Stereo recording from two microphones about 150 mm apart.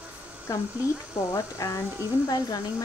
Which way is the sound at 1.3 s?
20° left (ahead or behind).